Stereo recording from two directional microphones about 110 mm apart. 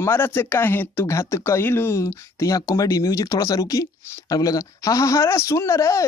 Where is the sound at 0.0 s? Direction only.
20° left (ahead or behind).